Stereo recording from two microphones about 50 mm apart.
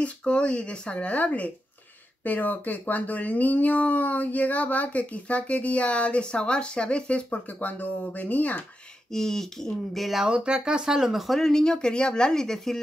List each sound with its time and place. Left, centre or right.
0.2 s speech: centre
9.1 s speech: centre
10.2 s speech: centre